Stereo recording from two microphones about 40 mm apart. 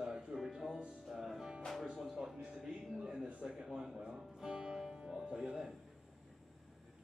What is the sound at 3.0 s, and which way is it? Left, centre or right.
Speech, right.